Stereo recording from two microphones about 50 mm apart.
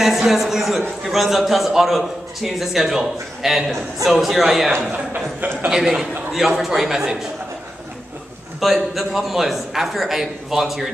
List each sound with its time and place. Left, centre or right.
0.0 s a man's voice: centre
4.9 s speech: right
5.7 s a man's voice: centre
8.5 s a man's voice: centre